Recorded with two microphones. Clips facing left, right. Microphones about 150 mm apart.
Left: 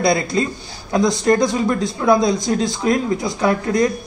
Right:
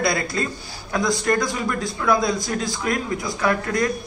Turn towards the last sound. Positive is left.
turn(degrees=25)  # may be behind; listen again after turning